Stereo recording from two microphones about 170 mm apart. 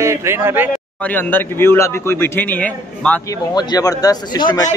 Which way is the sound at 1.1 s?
10° left (ahead or behind).